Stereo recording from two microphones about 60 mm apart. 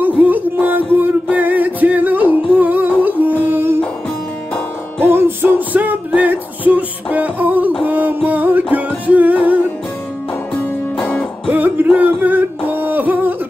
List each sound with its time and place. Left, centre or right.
0.0 s music: right
5.0 s music: right
10.6 s music: left
11.5 s music: right